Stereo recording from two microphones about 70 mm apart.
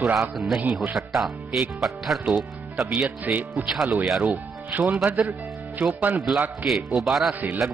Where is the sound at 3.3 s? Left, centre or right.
Right.